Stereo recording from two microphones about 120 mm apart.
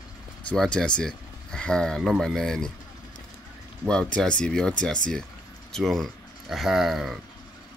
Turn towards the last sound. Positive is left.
turn(degrees=0)  # may be behind; listen again after turning